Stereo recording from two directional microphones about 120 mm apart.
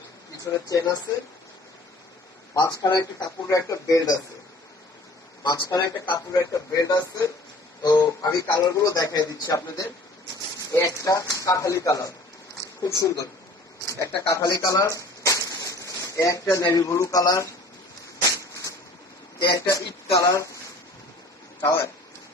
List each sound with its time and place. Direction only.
0.5 s speech: 30° left (ahead or behind)
2.5 s speech: 30° left (ahead or behind)
5.4 s speech: 30° left (ahead or behind)
13.8 s a sound: 25° left (ahead or behind)
16.7 s speech: 25° left (ahead or behind)
18.3 s a sound: 30° left (ahead or behind)
19.7 s speech: 25° left (ahead or behind)
21.5 s speech: 25° left (ahead or behind)